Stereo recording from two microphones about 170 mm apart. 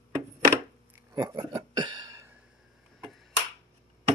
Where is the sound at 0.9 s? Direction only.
20° right (ahead or behind).